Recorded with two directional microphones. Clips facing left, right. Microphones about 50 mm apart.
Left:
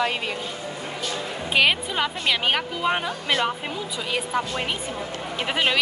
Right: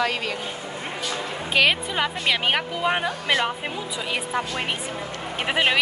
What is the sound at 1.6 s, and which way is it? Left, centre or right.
Speech, centre.